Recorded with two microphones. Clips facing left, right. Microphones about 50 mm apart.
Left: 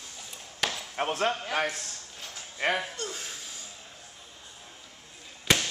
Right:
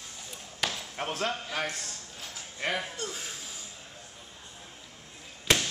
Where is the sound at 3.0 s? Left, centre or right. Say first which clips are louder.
Even; centre.